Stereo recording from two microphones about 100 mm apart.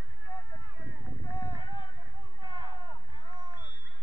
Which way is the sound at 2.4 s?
45° right (ahead or behind).